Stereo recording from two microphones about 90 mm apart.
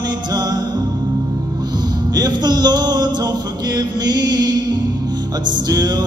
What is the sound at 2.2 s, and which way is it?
Music, 50° right (ahead or behind).